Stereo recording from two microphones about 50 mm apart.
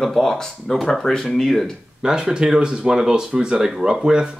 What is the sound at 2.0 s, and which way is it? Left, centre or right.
Speech, centre.